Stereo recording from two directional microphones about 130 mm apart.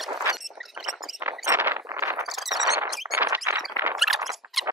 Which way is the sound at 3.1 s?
15° right (ahead or behind).